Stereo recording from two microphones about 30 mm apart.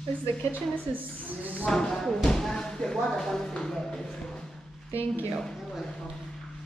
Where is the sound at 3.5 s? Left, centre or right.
Left.